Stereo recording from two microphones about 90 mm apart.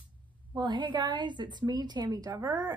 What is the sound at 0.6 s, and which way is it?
A woman's voice, 60° right (ahead or behind).